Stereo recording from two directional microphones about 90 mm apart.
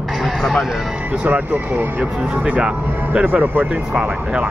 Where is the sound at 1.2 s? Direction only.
20° right (ahead or behind).